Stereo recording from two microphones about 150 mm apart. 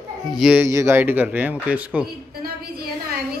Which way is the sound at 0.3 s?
5° right (ahead or behind).